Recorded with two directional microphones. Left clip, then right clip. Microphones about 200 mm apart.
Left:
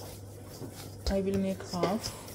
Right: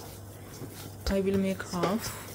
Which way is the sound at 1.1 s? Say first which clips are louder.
Right 3 dB; 15° right (ahead or behind).